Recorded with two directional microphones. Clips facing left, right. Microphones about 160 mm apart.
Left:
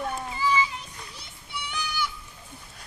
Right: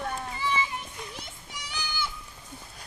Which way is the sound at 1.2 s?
40° right (ahead or behind).